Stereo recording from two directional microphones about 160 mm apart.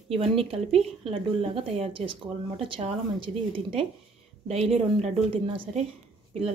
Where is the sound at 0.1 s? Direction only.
35° right (ahead or behind).